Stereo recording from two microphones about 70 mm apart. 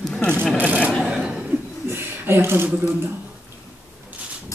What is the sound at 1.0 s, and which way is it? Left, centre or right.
Speech, centre.